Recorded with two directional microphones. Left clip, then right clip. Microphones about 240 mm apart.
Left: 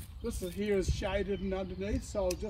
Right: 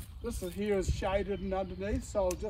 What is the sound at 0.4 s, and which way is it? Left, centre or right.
Speech, centre.